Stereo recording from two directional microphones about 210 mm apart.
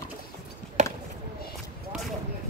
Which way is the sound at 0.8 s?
35° right (ahead or behind).